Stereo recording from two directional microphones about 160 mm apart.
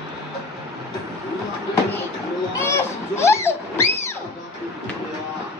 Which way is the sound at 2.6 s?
15° left (ahead or behind).